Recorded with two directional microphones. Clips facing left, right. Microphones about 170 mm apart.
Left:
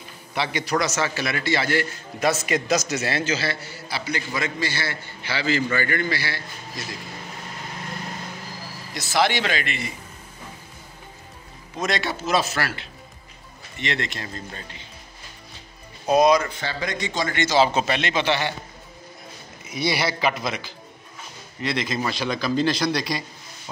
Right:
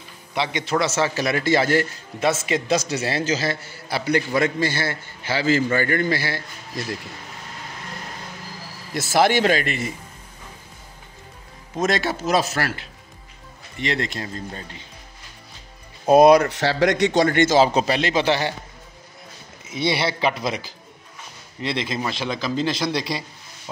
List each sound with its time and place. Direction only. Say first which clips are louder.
0.3 s a man's voice: right 1 dB; 20° right (ahead or behind); by 1.9 s 45° right (ahead or behind)
2.1 s a man's voice: right 1 dB; 25° right (ahead or behind); by 6.4 s 45° right (ahead or behind)
8.9 s a man's voice: right 4 dB; 45° right (ahead or behind)
11.8 s a man's voice: right 4 dB; 45° right (ahead or behind)
13.7 s a man's voice: right 3 dB; 35° right (ahead or behind)
16.1 s a man's voice: right 5 dB; 55° right (ahead or behind)
17.7 s a man's voice: right 3 dB; 35° right (ahead or behind)
19.6 s a man's voice: right 2 dB; 25° right (ahead or behind)